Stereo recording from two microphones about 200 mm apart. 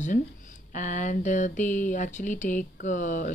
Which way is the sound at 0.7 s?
40° left (ahead or behind).